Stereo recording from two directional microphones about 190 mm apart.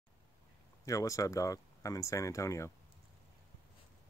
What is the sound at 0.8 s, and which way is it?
Speech, 15° left (ahead or behind).